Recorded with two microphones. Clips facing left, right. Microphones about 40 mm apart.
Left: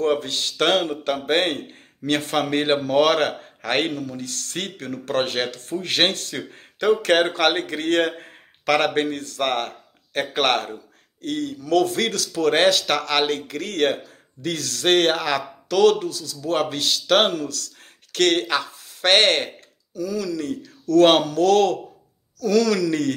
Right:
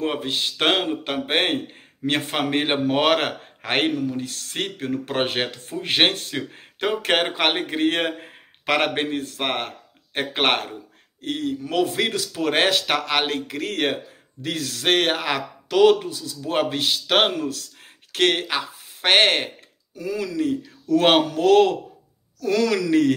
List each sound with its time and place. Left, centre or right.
0.0 s a man's voice: right
18.1 s a sound: right
20.1 s a man's voice: right